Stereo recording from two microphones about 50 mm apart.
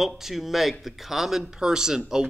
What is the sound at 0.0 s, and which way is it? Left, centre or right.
A man's voice, centre.